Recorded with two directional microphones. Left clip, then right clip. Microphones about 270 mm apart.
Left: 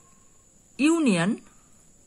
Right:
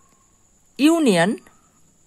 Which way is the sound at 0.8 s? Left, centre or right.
Right.